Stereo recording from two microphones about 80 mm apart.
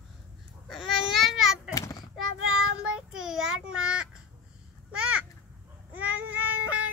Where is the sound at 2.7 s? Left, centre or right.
Centre.